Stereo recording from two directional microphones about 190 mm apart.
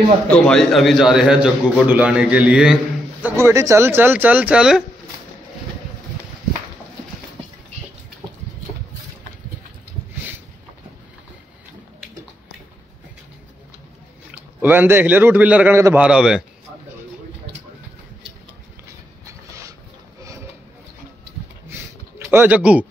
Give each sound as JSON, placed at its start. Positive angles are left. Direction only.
{"t": 0.3, "sound": "a man's voice", "side_deg": 5}
{"t": 14.6, "sound": "a man's voice", "side_deg": -10}
{"t": 19.2, "sound": "a sound", "side_deg": -15}
{"t": 22.3, "sound": "a man's voice", "side_deg": -10}